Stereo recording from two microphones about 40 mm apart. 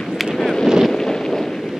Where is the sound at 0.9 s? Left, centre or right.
Centre.